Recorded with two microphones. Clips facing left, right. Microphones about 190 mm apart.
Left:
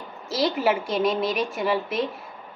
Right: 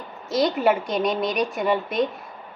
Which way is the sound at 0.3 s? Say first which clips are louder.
Right 3 dB; 5° left (ahead or behind).